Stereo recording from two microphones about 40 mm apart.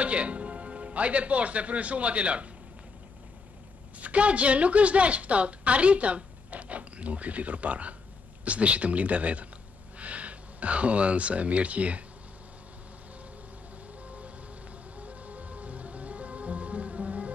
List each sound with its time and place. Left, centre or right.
0.0 s a man's voice: right
4.0 s a woman's voice: right
14.0 s music: right